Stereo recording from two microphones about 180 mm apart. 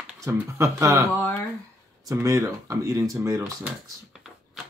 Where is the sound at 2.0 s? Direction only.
20° right (ahead or behind).